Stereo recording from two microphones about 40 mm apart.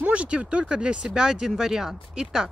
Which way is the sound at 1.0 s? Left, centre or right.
Centre.